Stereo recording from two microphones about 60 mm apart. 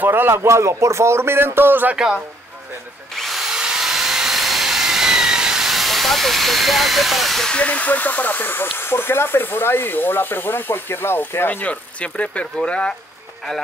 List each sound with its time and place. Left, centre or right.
0.0 s speech: right
2.0 s speech: centre
3.2 s drill: centre
7.5 s speech: left
11.6 s speech: left